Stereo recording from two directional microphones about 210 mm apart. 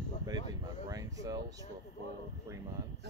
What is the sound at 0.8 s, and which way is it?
Speech, 15° right (ahead or behind).